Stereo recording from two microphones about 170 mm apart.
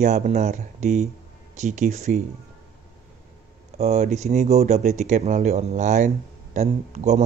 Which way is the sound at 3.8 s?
40° right (ahead or behind).